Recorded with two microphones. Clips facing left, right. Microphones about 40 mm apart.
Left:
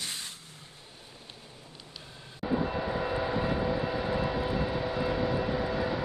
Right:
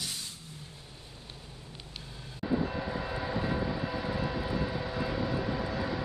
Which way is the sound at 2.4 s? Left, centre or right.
Centre.